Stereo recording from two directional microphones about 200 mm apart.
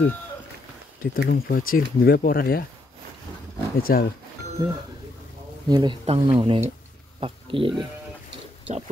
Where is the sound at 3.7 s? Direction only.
50° left (ahead or behind).